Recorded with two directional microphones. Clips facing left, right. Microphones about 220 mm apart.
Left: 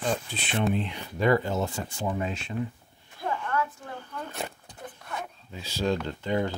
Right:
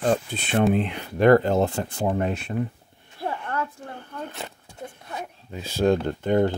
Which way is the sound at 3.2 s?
30° right (ahead or behind).